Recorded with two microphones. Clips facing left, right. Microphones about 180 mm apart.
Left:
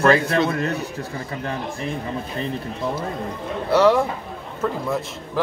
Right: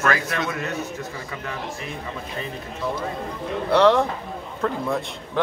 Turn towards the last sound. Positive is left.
turn(degrees=5)  # may be behind; listen again after turning